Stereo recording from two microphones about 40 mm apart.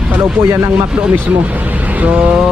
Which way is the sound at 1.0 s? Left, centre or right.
Right.